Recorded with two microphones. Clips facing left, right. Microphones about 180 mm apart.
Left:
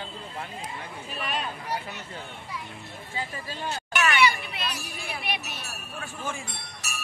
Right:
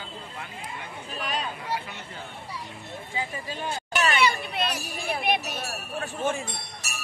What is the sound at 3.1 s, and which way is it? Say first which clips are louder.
Speech: right 2 dB; 20° right (ahead or behind).